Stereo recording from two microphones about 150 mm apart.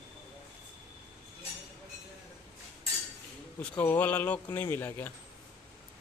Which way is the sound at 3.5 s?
10° left (ahead or behind).